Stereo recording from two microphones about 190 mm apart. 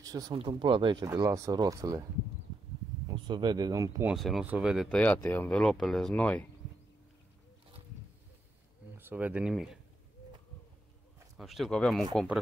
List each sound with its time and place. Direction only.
0.0 s speech: 20° right (ahead or behind)
3.1 s speech: 20° right (ahead or behind)
4.1 s speech: centre (ahead or behind)
8.9 s speech: 10° right (ahead or behind)
11.3 s speech: centre (ahead or behind)